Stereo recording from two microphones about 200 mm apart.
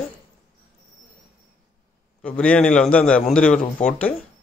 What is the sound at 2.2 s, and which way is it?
A man's voice, 5° left (ahead or behind).